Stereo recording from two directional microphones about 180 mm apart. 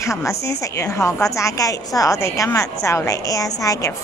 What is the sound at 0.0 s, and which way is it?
A woman's voice, 15° left (ahead or behind).